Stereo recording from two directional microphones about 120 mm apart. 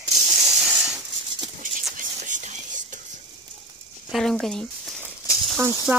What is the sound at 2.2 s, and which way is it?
Whispering, 90° right.